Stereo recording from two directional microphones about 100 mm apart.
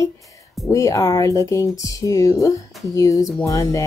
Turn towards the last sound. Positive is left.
turn(degrees=35)  # may be behind; listen again after turning